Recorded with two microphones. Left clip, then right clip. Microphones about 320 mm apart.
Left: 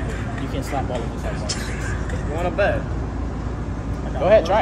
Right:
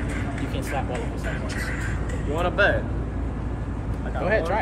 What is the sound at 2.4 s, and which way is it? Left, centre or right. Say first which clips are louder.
Speech: even; centre.